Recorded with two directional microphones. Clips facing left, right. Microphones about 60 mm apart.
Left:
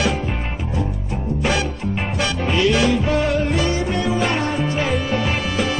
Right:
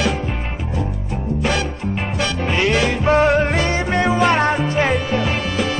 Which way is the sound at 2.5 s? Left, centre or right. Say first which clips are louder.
Left 2 dB; right.